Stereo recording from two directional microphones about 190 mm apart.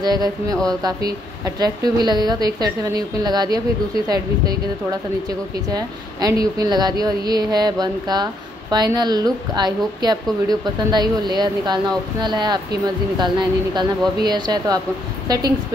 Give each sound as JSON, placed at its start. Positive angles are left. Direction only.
{"t": 0.0, "sound": "a woman's voice", "side_deg": -20}
{"t": 5.7, "sound": "a woman's voice", "side_deg": -20}